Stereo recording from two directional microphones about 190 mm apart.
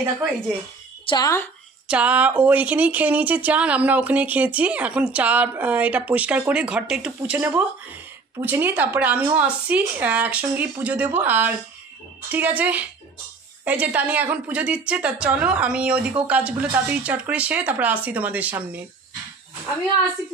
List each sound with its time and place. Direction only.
1.0 s a woman's voice: 20° left (ahead or behind)
1.9 s speech: 5° right (ahead or behind)